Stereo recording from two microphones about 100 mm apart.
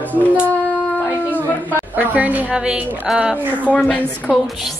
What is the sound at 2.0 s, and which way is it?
A woman's voice, 15° right (ahead or behind).